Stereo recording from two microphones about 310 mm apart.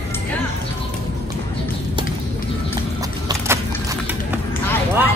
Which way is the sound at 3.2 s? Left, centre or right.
Centre.